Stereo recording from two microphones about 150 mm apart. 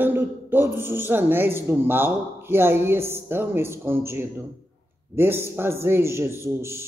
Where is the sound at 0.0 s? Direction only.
15° right (ahead or behind).